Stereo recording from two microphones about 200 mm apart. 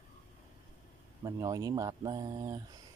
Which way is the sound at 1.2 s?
15° right (ahead or behind).